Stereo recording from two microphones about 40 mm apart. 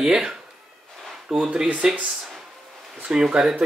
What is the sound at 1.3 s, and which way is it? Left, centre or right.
Speech, centre.